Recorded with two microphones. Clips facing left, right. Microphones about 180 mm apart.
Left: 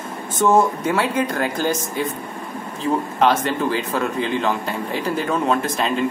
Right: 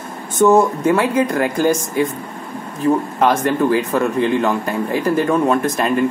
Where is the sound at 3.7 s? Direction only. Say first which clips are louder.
Right 6 dB; 60° right (ahead or behind).